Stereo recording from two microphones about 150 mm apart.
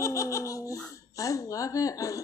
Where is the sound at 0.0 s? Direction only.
20° left (ahead or behind).